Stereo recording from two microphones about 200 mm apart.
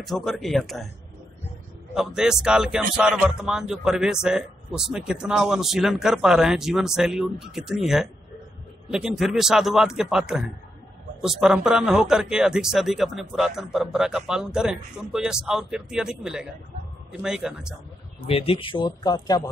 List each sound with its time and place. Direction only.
0.0 s speech: centre (ahead or behind)
2.0 s speech: 5° right (ahead or behind)
18.2 s speech: 30° left (ahead or behind)